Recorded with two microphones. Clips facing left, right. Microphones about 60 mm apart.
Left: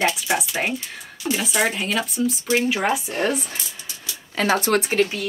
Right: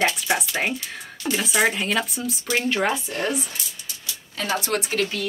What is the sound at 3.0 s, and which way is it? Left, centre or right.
Speech, left.